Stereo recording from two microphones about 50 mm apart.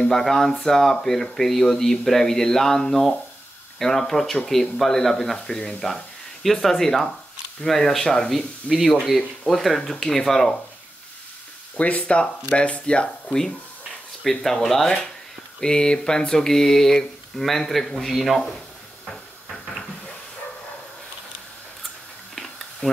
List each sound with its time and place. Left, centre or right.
0.1 s speech: centre
11.7 s speech: left
14.3 s speech: centre
15.6 s speech: centre